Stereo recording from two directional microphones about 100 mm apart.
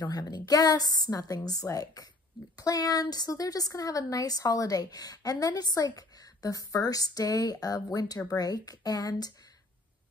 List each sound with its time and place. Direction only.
0.0 s a woman's voice: 40° left (ahead or behind)